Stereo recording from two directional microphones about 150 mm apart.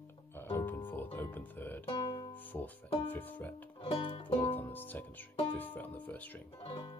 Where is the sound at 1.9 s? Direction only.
35° left (ahead or behind).